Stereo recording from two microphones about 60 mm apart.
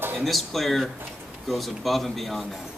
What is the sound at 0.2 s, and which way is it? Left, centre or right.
Speech, centre.